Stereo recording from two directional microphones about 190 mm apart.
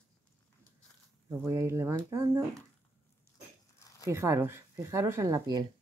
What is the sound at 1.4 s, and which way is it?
Speech, 15° right (ahead or behind).